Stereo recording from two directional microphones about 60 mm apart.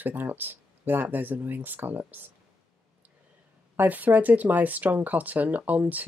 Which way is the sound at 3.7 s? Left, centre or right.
Right.